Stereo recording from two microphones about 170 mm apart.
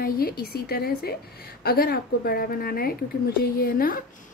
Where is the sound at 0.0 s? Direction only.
60° left (ahead or behind).